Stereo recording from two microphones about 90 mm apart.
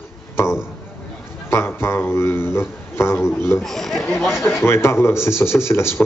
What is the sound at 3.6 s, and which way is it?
Speech, 5° left (ahead or behind).